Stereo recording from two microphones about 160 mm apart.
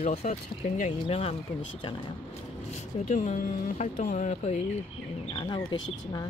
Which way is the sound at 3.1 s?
55° left (ahead or behind).